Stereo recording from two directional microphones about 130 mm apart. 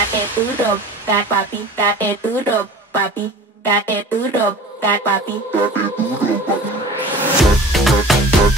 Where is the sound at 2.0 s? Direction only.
15° left (ahead or behind).